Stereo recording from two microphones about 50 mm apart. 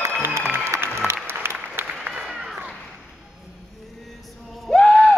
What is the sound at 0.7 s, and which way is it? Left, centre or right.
Applause, right.